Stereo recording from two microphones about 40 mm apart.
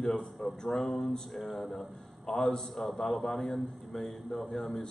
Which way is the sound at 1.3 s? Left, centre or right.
Centre.